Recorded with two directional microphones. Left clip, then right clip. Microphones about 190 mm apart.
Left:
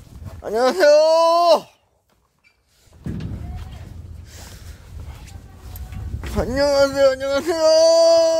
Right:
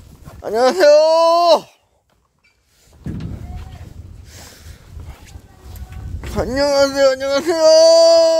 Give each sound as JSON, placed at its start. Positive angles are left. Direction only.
{"t": 0.4, "sound": "speech", "side_deg": -10}
{"t": 6.3, "sound": "speech", "side_deg": -5}